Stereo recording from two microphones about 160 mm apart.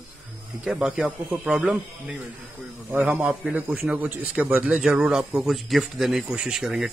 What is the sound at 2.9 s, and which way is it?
A man's voice, 10° right (ahead or behind).